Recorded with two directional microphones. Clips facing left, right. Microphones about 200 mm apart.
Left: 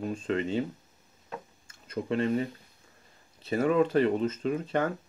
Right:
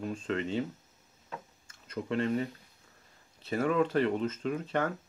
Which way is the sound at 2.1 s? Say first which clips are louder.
Left 3 dB; 20° left (ahead or behind).